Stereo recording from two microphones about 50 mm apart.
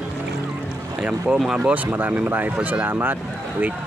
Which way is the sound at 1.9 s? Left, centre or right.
Right.